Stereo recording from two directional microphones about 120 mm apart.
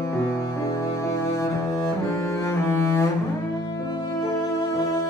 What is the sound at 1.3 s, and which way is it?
Cello, 25° left (ahead or behind).